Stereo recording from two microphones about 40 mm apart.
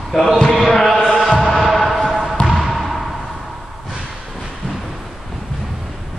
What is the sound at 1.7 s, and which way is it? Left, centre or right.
Basketball bounce, centre.